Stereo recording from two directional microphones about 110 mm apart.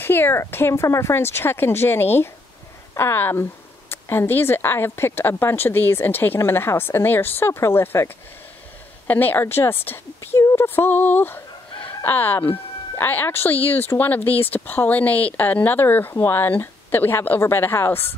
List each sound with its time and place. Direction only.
0.0 s a woman's voice: 20° left (ahead or behind)